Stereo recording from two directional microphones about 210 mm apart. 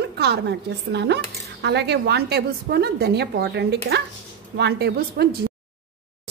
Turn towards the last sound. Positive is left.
turn(degrees=-50)  # may be behind; listen again after turning